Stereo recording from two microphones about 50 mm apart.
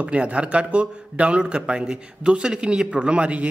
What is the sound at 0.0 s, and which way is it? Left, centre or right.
Speech, right.